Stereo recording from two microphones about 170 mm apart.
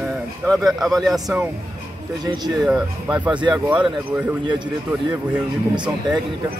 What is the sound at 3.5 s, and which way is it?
Speech, 5° right (ahead or behind).